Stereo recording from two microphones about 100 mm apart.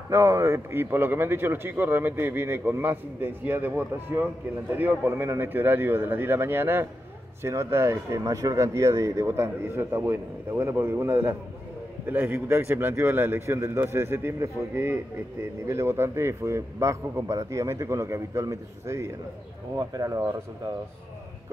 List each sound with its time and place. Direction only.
0.1 s a man's voice: 30° right (ahead or behind)